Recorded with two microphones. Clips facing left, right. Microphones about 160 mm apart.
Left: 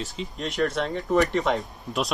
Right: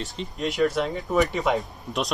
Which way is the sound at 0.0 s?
Centre (ahead or behind).